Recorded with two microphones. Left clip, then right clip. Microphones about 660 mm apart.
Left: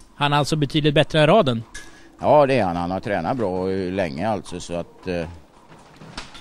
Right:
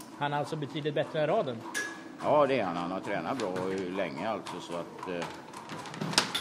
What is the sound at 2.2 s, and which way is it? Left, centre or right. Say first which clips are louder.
Speech: left 10 dB; left.